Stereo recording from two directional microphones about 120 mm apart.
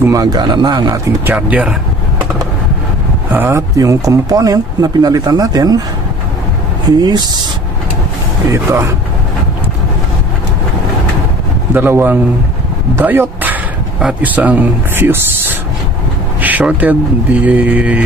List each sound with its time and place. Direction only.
0.0 s speech: 30° right (ahead or behind)
1.2 s speech: 10° right (ahead or behind)
3.3 s speech: 25° right (ahead or behind)
6.9 s speech: 35° right (ahead or behind)
8.5 s speech: 25° right (ahead or behind)
11.7 s speech: 15° right (ahead or behind)